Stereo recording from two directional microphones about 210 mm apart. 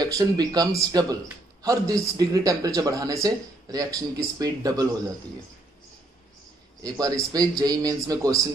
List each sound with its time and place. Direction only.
0.0 s a man's voice: 20° right (ahead or behind)
6.8 s a man's voice: 15° right (ahead or behind)